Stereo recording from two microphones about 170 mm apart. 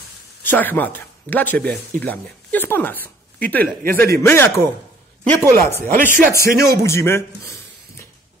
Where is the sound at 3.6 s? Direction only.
60° right (ahead or behind).